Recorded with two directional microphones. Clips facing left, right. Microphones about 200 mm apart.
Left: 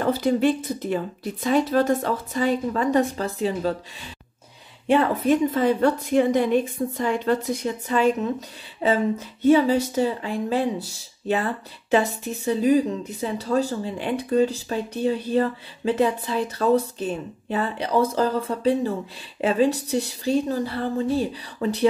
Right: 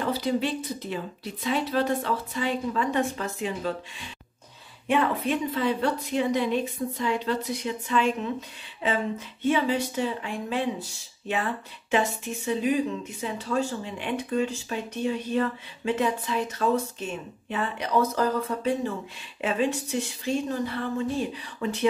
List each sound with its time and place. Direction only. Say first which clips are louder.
0.0 s a woman's voice: left 6 dB; 50° left (ahead or behind); by 3.7 s 35° left (ahead or behind)
4.8 s a woman's voice: left 5 dB; 40° left (ahead or behind)
11.9 s speech: left 4 dB; 35° left (ahead or behind)